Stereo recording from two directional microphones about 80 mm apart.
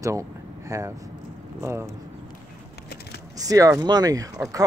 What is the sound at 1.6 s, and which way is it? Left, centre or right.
Speech, right.